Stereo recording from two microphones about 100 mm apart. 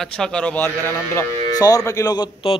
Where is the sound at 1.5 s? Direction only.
40° left (ahead or behind).